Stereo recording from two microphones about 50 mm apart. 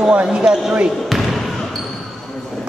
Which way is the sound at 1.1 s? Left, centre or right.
Centre.